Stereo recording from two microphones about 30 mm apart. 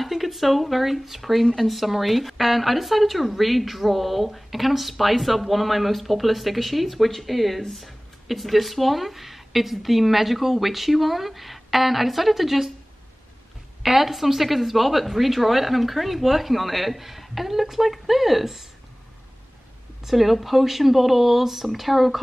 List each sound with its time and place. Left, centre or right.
0.0 s speech: centre
1.4 s speech: centre
1.7 s speech: centre
13.8 s speech: centre
20.1 s speech: centre